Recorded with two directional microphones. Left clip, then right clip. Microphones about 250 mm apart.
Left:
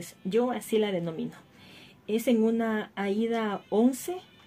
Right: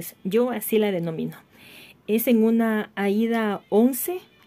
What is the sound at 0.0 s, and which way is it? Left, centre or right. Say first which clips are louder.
Speech: right 5 dB; right.